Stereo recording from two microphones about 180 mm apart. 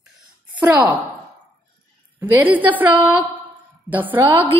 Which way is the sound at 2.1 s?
10° right (ahead or behind).